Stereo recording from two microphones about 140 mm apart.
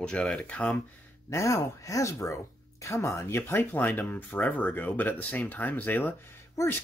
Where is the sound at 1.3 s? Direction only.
20° left (ahead or behind).